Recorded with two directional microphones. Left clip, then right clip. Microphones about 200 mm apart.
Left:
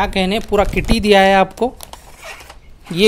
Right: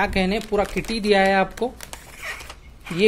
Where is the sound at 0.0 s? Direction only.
20° left (ahead or behind).